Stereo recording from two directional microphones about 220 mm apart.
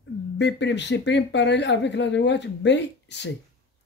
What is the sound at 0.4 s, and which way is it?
Speech, 55° left (ahead or behind).